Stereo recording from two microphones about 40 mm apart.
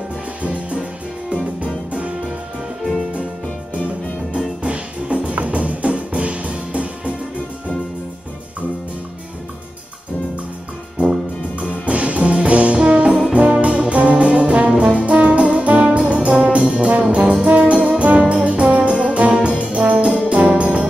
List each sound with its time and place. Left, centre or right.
0.4 s music: right
1.3 s music: right
4.6 s music: right
11.0 s music: right
13.3 s brass instrument: right
17.8 s music: right
18.3 s brass instrument: right
19.0 s music: right
19.6 s brass instrument: right
20.2 s music: right